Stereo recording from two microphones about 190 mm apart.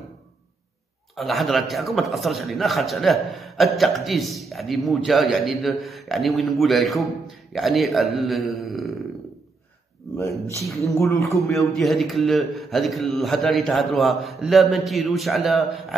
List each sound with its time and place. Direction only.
1.1 s a man's voice: centre (ahead or behind)
10.6 s a man's voice: centre (ahead or behind)
11.2 s a man's voice: 15° left (ahead or behind)
11.7 s a man's voice: centre (ahead or behind)